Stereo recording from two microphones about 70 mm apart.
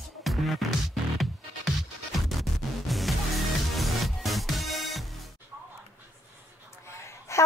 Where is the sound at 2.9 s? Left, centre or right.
Centre.